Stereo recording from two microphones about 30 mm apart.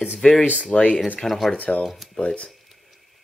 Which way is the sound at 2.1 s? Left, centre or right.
Left.